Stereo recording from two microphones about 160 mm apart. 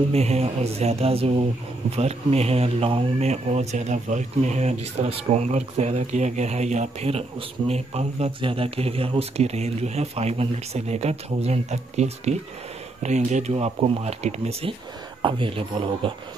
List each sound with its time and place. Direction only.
0.1 s speech: 40° right (ahead or behind)